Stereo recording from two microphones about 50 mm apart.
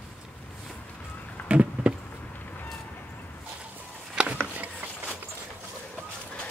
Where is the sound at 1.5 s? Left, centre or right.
Right.